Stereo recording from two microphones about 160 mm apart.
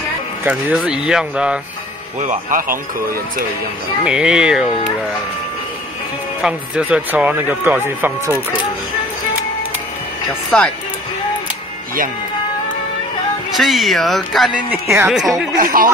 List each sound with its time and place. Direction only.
0.4 s speech: 10° right (ahead or behind)
2.1 s speech: 55° right (ahead or behind)
4.0 s speech: 5° right (ahead or behind)
6.4 s speech: 5° right (ahead or behind)
10.5 s speech: 5° left (ahead or behind)
13.6 s speech: centre (ahead or behind)
14.7 s speech: 15° right (ahead or behind)
15.1 s speech: centre (ahead or behind)
15.6 s speech: 65° right (ahead or behind)